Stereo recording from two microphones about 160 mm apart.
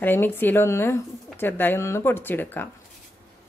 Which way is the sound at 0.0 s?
10° left (ahead or behind).